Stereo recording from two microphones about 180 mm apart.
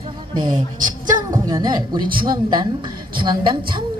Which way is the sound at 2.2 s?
25° right (ahead or behind).